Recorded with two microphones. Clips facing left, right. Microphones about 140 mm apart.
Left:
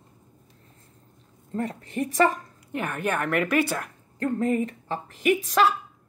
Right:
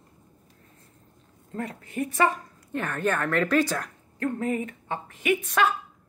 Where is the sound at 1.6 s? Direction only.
35° left (ahead or behind).